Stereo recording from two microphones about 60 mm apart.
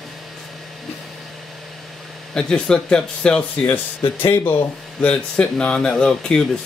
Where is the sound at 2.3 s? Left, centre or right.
Centre.